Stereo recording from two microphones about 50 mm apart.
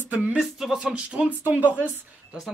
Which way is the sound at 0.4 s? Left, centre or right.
Centre.